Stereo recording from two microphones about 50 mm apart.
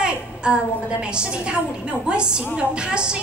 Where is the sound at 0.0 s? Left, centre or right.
Centre.